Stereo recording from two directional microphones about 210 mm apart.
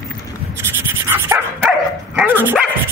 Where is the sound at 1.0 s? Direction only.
10° right (ahead or behind).